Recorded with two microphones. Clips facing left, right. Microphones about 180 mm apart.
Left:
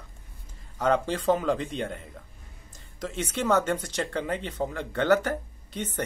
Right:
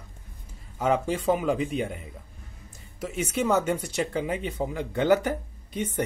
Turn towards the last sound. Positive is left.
turn(degrees=-10)  # may be behind; listen again after turning